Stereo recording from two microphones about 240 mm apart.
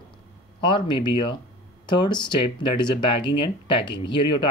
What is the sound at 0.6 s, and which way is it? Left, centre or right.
Speech, centre.